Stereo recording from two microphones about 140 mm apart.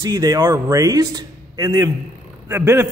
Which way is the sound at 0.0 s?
25° right (ahead or behind).